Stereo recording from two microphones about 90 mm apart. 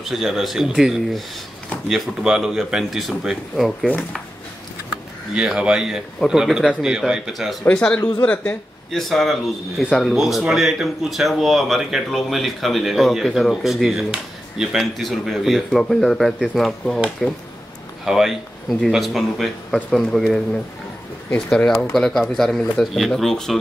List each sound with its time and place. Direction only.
0.0 s speech: 5° right (ahead or behind)
3.8 s speech: 10° left (ahead or behind)
5.3 s speech: 10° right (ahead or behind)
7.6 s speech: 15° left (ahead or behind)
8.9 s speech: centre (ahead or behind)
21.5 s speech: 5° left (ahead or behind)